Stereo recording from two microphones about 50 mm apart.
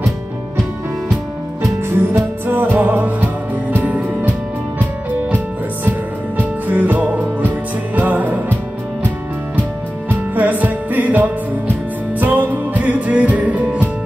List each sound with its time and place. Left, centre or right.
1.6 s music: right
2.4 s music: right
3.8 s music: right
6.3 s music: right
10.3 s music: right